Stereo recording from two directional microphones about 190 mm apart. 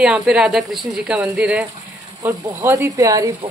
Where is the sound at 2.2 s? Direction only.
20° right (ahead or behind).